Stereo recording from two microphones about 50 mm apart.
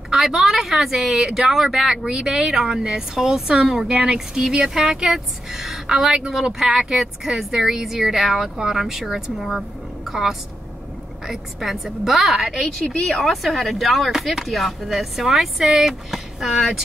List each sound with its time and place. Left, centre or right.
0.1 s a woman's voice: centre